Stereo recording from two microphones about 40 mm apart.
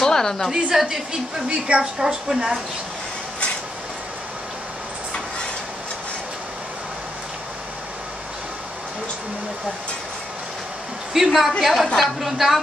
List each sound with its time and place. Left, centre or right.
0.0 s a sound: centre
0.5 s a woman's voice: centre
11.2 s a woman's voice: centre